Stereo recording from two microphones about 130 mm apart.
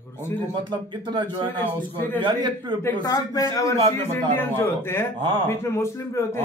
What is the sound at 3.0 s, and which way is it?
A man's voice, 30° left (ahead or behind).